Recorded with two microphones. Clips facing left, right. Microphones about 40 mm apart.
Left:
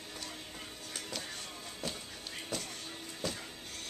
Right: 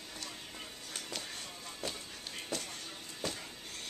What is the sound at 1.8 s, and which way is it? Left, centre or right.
Music, centre.